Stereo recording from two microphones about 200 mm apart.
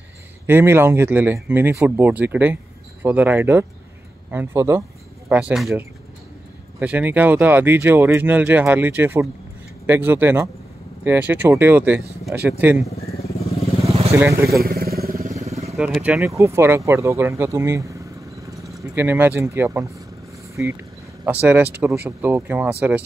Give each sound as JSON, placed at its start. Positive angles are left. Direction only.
{"t": 0.5, "sound": "speech", "side_deg": -10}
{"t": 14.1, "sound": "speech", "side_deg": -15}
{"t": 14.6, "sound": "motorcycle", "side_deg": -50}
{"t": 15.7, "sound": "speech", "side_deg": -5}
{"t": 21.3, "sound": "speech", "side_deg": -10}